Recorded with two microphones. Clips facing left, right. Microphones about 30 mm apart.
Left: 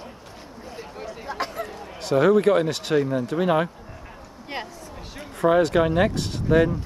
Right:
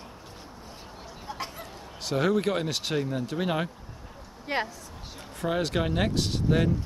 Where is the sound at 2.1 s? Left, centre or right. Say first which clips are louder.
Left 8 dB; centre.